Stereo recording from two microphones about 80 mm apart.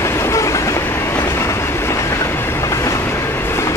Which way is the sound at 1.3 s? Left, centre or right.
Left.